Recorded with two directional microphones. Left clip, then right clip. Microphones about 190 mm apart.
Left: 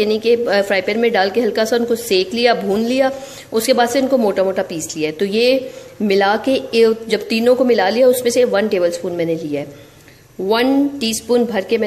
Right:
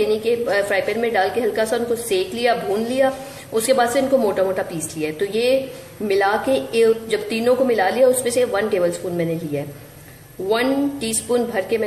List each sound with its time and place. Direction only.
0.0 s speech: 45° left (ahead or behind)